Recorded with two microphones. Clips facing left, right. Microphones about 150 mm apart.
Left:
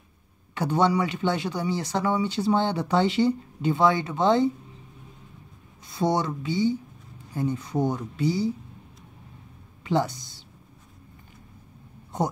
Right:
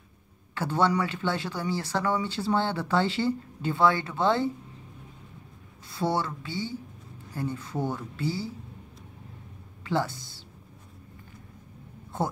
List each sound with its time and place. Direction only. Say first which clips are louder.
0.6 s speech: left 3 dB; 15° left (ahead or behind)
5.9 s speech: left 3 dB; 15° left (ahead or behind)
9.8 s speech: left 3 dB; 15° left (ahead or behind)
12.1 s speech: left 3 dB; 15° left (ahead or behind)